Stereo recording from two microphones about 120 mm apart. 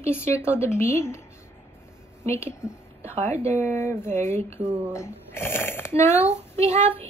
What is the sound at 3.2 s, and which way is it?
Speech, 20° left (ahead or behind).